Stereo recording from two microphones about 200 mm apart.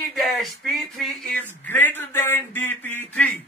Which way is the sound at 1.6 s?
10° left (ahead or behind).